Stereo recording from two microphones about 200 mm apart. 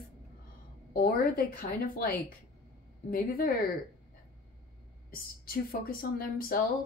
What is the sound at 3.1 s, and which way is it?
Speech, 45° left (ahead or behind).